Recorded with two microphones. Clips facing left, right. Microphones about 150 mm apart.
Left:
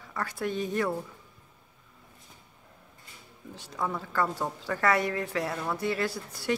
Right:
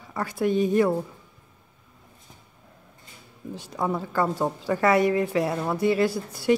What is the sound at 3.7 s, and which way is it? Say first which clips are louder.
Speech: right 5 dB; 25° right (ahead or behind).